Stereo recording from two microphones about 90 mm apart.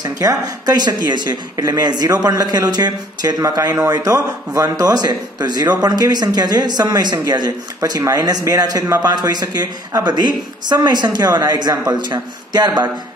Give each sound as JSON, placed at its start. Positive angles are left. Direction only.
{"t": 0.0, "sound": "a woman's voice", "side_deg": -45}
{"t": 3.3, "sound": "a woman's voice", "side_deg": -35}